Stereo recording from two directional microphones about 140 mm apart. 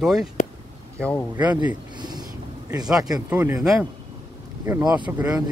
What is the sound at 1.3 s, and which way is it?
Speech, 10° right (ahead or behind).